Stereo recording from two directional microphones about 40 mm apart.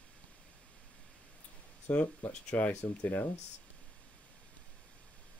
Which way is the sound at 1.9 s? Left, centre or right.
Left.